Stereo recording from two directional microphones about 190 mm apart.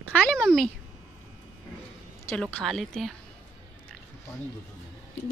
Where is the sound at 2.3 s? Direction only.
5° left (ahead or behind).